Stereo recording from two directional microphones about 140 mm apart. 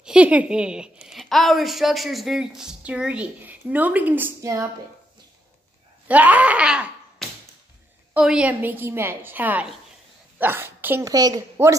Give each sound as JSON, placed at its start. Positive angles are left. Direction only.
{"t": 0.0, "sound": "a woman's voice", "side_deg": -5}
{"t": 6.0, "sound": "a woman's voice", "side_deg": -10}
{"t": 8.1, "sound": "a woman's voice", "side_deg": -5}
{"t": 11.1, "sound": "a woman's voice", "side_deg": -25}